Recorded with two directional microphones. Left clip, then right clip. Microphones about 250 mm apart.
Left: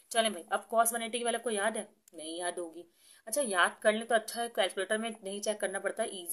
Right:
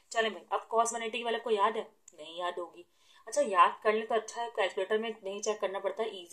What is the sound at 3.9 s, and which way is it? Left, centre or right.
A woman's voice, left.